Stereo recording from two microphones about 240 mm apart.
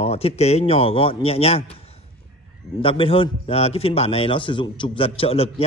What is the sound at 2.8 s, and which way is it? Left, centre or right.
A man's voice, left.